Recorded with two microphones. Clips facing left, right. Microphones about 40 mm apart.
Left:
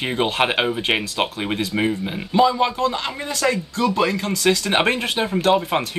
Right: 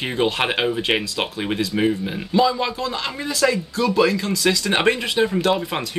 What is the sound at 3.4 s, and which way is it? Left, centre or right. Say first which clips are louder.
Speech: right 2 dB; centre.